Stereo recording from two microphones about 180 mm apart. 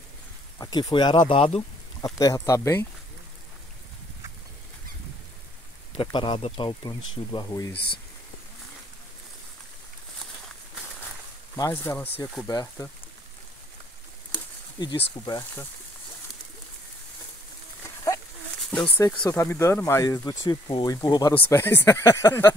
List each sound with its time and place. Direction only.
0.6 s speech: 20° left (ahead or behind)
2.0 s speech: 20° left (ahead or behind)
5.9 s speech: 30° left (ahead or behind)
11.5 s speech: 15° left (ahead or behind)
14.8 s speech: 25° left (ahead or behind)
18.9 s speech: 15° left (ahead or behind)